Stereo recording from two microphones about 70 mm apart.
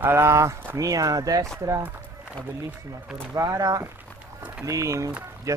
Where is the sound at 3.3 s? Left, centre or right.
Right.